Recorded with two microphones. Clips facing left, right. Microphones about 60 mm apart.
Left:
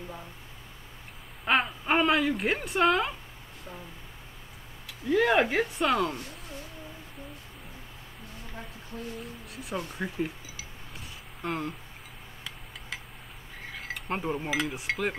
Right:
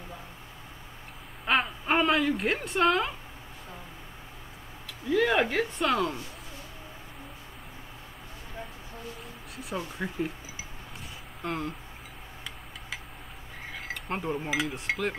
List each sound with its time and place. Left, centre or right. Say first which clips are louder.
1.4 s a woman's voice: left 1 dB; centre
5.0 s speech: left 1 dB; centre
9.2 s speech: left 1 dB; centre
11.4 s speech: even; centre
13.7 s speech: left 1 dB; centre